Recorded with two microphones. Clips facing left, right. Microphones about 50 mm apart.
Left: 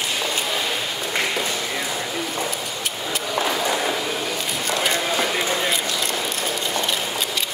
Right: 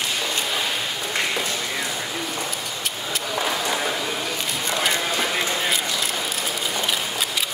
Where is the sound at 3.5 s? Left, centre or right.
Centre.